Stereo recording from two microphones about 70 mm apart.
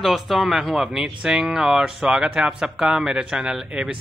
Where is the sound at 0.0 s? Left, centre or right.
Centre.